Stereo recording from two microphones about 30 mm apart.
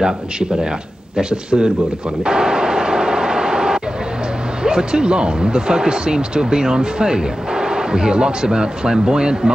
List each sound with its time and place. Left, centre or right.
1.3 s speech: right
2.2 s vehicle: right
4.6 s speech: right